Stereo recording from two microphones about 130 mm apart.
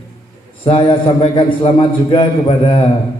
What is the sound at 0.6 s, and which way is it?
A man's voice, 40° left (ahead or behind).